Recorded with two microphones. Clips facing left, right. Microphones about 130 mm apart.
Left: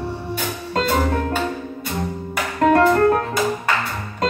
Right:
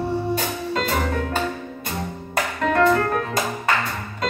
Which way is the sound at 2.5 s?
35° left (ahead or behind).